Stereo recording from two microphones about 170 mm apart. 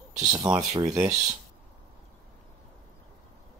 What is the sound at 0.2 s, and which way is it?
Speech, 20° right (ahead or behind).